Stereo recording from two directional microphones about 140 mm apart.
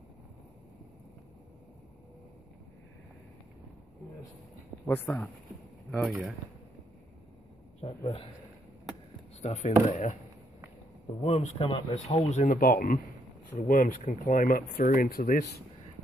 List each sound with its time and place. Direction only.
4.8 s speech: 15° left (ahead or behind)
5.9 s speech: centre (ahead or behind)
7.8 s a man's voice: 45° left (ahead or behind)
9.4 s speech: 55° left (ahead or behind)
11.2 s speech: 50° left (ahead or behind)
12.4 s speech: 80° left
13.7 s speech: 75° left (ahead or behind)